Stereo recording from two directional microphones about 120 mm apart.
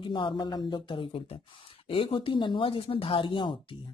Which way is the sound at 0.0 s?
40° left (ahead or behind).